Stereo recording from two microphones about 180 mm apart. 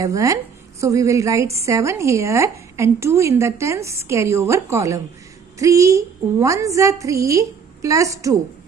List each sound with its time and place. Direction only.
0.0 s a woman's voice: 15° right (ahead or behind)